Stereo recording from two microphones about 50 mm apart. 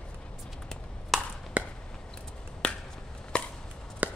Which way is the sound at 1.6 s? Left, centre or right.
Right.